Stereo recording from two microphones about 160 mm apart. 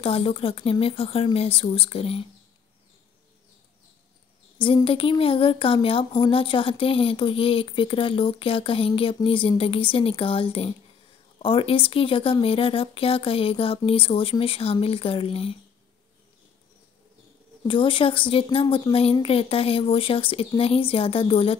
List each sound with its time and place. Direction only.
0.0 s a woman's voice: 35° left (ahead or behind)
4.6 s a woman's voice: 30° left (ahead or behind)
17.6 s a woman's voice: 35° left (ahead or behind)